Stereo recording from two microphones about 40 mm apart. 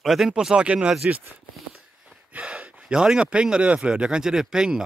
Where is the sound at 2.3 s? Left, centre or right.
Right.